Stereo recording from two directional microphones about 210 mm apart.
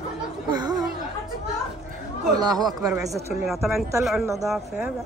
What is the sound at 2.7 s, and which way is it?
Speech, 15° right (ahead or behind).